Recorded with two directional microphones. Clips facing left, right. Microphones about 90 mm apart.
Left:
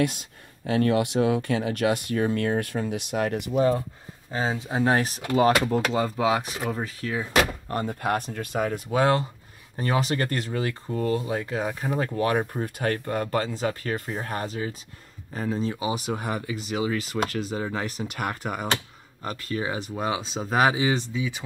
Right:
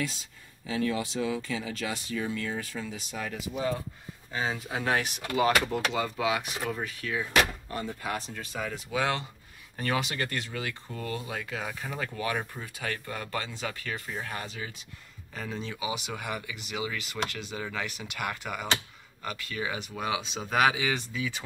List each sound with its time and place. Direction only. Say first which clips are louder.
0.0 s speech: left 9 dB; 55° left (ahead or behind)
3.5 s speech: left 9 dB; 40° left (ahead or behind); by 21.4 s 20° left (ahead or behind)